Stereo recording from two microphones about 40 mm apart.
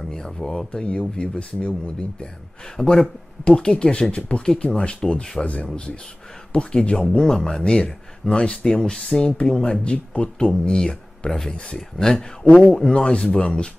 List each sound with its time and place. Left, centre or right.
0.1 s speech: centre
2.8 s speech: centre
3.4 s speech: left
5.4 s speech: left
6.5 s speech: left
7.1 s speech: centre